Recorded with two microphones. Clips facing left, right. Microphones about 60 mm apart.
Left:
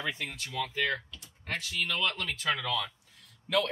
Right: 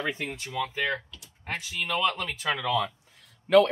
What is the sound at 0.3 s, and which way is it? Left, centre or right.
Speech, right.